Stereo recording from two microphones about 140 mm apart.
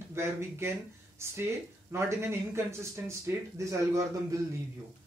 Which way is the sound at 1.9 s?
20° right (ahead or behind).